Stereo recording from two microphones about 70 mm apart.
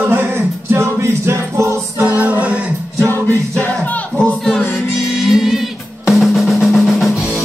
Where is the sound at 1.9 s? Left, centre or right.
Right.